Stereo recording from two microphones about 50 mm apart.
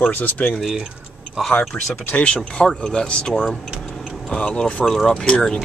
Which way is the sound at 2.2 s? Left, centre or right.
Centre.